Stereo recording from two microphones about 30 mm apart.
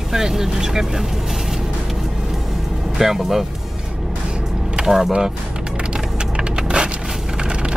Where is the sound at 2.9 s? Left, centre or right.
Centre.